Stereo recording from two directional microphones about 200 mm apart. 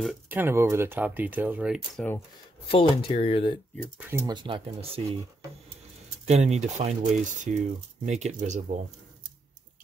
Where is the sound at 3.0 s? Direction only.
25° left (ahead or behind).